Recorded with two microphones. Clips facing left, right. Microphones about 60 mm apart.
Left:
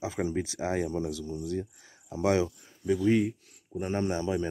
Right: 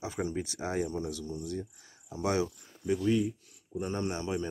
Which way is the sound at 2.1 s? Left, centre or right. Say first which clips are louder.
Left 4 dB; left.